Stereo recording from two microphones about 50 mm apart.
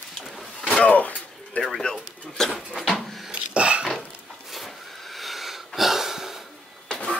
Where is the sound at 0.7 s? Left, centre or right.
Left.